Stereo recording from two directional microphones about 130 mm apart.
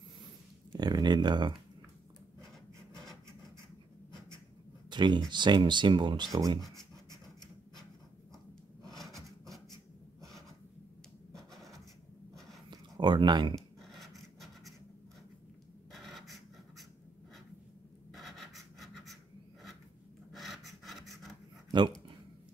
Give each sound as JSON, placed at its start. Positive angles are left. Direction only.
{"t": 0.7, "sound": "speech", "side_deg": -30}
{"t": 4.8, "sound": "speech", "side_deg": -35}
{"t": 8.8, "sound": "filing", "side_deg": 0}
{"t": 11.5, "sound": "rub", "side_deg": 0}
{"t": 12.6, "sound": "a sound", "side_deg": -35}
{"t": 13.6, "sound": "scratch", "side_deg": 0}
{"t": 15.9, "sound": "scratch", "side_deg": 0}
{"t": 18.1, "sound": "scratch", "side_deg": 0}
{"t": 20.3, "sound": "filing", "side_deg": 0}
{"t": 21.6, "sound": "a sound", "side_deg": -35}